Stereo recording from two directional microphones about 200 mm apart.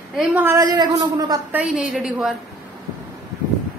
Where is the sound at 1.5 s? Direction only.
5° right (ahead or behind).